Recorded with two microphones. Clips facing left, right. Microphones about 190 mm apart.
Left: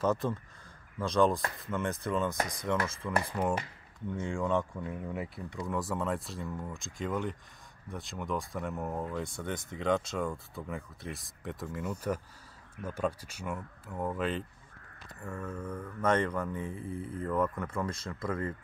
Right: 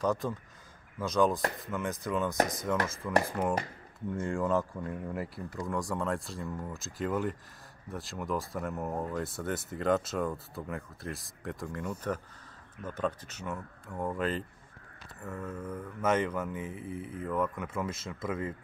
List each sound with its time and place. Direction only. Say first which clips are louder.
0.0 s speech: left 1 dB; centre (ahead or behind)